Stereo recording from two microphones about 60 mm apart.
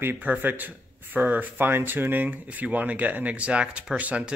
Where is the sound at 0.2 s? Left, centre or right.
Right.